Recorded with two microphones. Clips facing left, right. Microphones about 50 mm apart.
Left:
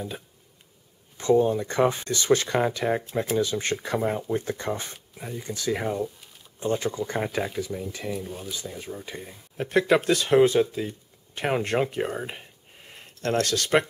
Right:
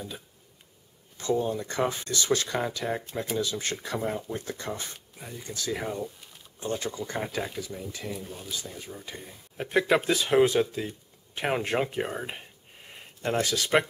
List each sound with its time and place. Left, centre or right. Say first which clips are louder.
1.1 s speech: left 7 dB; left
4.9 s speech: left 6 dB; centre
7.2 s speech: left 5 dB; centre
9.6 s speech: left 3 dB; centre